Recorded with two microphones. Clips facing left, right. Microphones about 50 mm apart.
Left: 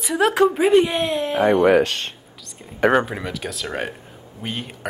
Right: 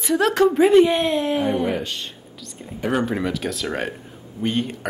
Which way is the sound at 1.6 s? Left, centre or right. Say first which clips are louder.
Left 9 dB; left.